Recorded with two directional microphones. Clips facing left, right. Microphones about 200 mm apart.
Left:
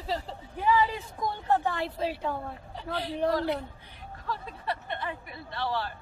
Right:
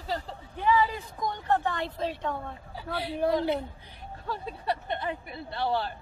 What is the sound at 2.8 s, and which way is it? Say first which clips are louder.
Speech: even; 10° right (ahead or behind).